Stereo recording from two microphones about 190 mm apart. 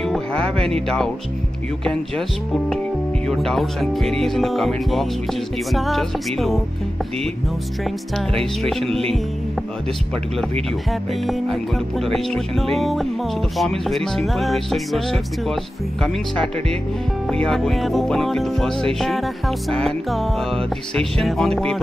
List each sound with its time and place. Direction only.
0.0 s music: centre (ahead or behind)
8.6 s music: centre (ahead or behind)
10.9 s music: centre (ahead or behind)
17.3 s music: centre (ahead or behind)